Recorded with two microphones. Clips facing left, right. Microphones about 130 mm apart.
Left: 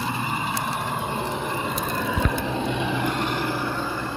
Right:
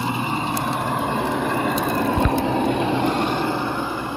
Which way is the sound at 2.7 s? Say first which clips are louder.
Right 5 dB; 35° right (ahead or behind).